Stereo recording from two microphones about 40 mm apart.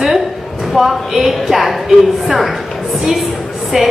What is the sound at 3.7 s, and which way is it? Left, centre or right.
Train, centre.